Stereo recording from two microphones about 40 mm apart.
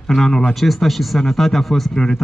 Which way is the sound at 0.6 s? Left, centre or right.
Centre.